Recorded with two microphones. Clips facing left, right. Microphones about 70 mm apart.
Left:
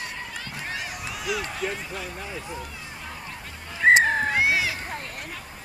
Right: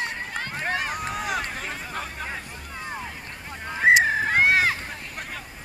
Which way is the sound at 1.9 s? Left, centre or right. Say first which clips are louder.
Right 2 dB; right.